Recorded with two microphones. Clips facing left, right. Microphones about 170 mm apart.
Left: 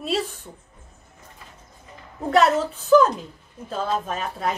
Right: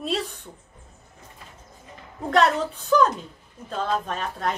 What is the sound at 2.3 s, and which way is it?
A woman's voice, 5° left (ahead or behind).